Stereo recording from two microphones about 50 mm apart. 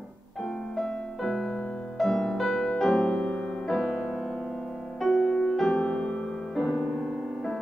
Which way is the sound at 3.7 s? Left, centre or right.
Centre.